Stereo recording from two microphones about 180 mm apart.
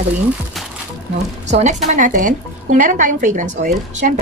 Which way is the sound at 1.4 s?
40° right (ahead or behind).